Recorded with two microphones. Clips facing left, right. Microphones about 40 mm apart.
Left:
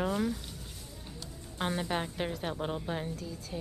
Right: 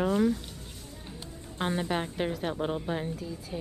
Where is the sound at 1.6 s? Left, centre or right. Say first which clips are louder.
Right 3 dB; centre.